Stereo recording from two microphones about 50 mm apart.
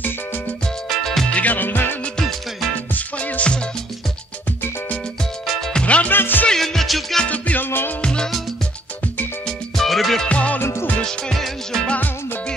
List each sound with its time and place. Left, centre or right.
0.8 s music: centre
1.3 s music: left
2.9 s music: left
5.7 s music: left
6.0 s music: left
6.5 s music: centre
7.2 s music: left
8.0 s music: centre
9.8 s music: centre
10.2 s music: left
11.0 s music: centre